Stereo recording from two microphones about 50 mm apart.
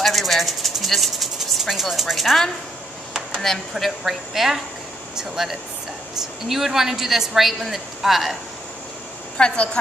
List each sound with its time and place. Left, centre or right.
0.0 s a sound: centre
3.3 s a man's voice: centre
9.4 s a woman's voice: left